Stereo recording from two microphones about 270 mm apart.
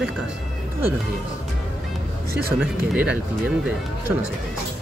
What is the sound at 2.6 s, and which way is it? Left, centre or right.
Speech, centre.